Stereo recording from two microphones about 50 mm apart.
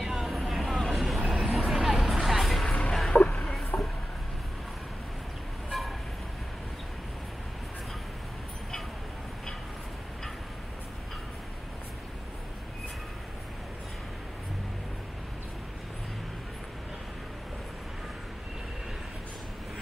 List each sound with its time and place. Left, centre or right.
0.0 s vehicle: centre
1.3 s a sound: centre
1.7 s music: centre
2.8 s a sound: centre
3.1 s music: left
5.7 s vehicle: centre